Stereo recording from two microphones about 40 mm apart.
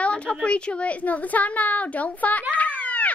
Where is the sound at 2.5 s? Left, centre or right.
Left.